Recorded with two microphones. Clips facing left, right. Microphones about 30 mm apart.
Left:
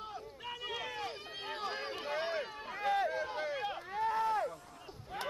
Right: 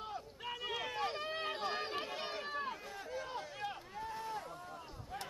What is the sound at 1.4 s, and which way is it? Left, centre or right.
Run, centre.